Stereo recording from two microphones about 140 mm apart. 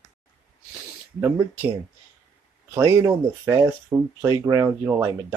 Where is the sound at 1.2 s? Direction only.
15° right (ahead or behind).